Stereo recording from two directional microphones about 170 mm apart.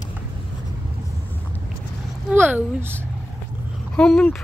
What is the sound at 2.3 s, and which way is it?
Speech, 10° right (ahead or behind).